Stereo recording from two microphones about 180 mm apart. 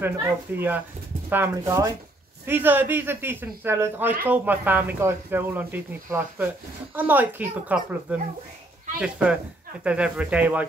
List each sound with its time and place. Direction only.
0.6 s speech: 10° right (ahead or behind)